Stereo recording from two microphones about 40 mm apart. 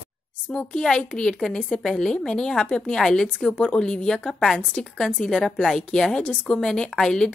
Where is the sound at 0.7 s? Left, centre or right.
Left.